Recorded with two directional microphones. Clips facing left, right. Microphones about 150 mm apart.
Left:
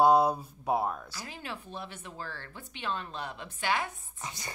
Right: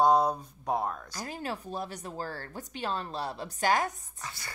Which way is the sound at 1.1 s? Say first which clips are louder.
Right 5 dB; 45° right (ahead or behind).